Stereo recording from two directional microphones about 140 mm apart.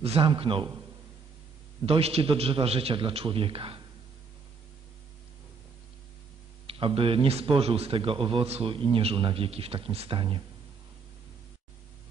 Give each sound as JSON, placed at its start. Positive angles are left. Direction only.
{"t": 0.0, "sound": "a man's voice", "side_deg": -45}
{"t": 1.9, "sound": "a man's voice", "side_deg": -45}
{"t": 6.7, "sound": "a man's voice", "side_deg": -40}